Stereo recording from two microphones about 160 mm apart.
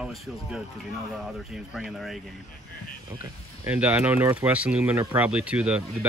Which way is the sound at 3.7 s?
10° right (ahead or behind).